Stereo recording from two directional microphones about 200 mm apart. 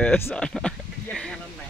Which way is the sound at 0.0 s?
5° left (ahead or behind).